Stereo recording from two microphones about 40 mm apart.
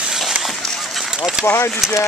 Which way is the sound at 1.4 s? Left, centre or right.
Left.